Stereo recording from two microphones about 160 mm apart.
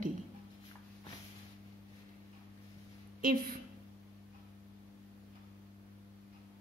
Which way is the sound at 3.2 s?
60° right (ahead or behind).